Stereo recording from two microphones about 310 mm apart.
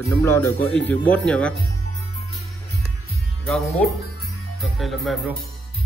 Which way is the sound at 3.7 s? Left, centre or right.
Centre.